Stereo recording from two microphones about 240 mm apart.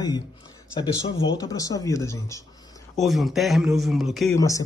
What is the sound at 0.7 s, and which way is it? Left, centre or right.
Speech, left.